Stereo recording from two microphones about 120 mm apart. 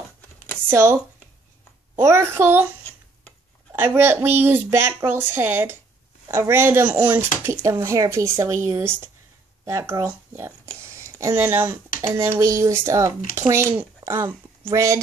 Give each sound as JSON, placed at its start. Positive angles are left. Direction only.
{"t": 0.7, "sound": "speech", "side_deg": -20}
{"t": 2.0, "sound": "speech", "side_deg": -20}
{"t": 3.7, "sound": "speech", "side_deg": -20}
{"t": 7.4, "sound": "speech", "side_deg": -25}